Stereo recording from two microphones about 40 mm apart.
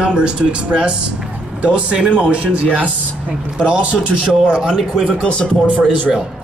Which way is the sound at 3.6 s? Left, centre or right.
Right.